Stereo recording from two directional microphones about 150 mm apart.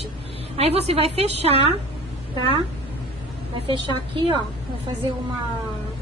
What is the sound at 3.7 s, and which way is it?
Speech, 30° right (ahead or behind).